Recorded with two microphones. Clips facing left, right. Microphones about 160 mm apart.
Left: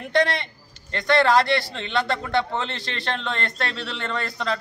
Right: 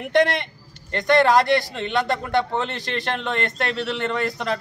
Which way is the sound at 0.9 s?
15° right (ahead or behind).